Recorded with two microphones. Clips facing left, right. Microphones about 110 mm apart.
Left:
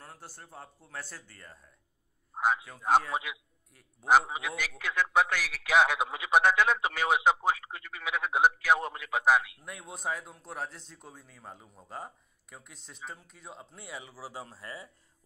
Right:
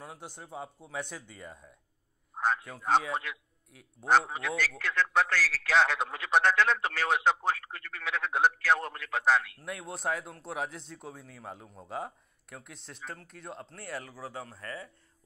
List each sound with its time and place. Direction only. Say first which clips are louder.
0.0 s a man's voice: right 4 dB; 15° right (ahead or behind)
1.1 s speech: right 5 dB; centre (ahead or behind)
2.3 s a man's voice: left 1 dB; 10° left (ahead or behind)
14.3 s a man's voice: right 2 dB; 15° left (ahead or behind)